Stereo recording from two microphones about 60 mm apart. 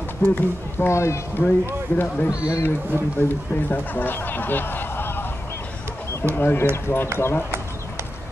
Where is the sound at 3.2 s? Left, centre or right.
Left.